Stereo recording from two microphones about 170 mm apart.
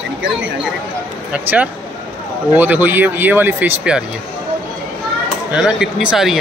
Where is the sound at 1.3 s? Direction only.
10° right (ahead or behind).